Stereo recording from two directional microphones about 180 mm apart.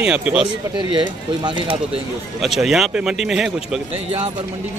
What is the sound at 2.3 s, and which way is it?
Speech, centre (ahead or behind).